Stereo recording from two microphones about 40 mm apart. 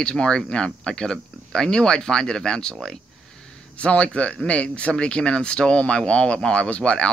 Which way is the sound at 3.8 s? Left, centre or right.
Left.